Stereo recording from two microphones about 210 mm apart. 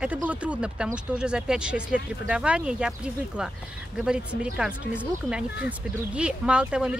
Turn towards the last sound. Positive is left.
turn(degrees=-5)  # may be behind; listen again after turning